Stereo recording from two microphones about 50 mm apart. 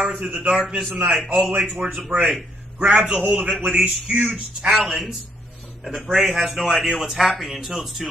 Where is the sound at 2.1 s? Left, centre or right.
Right.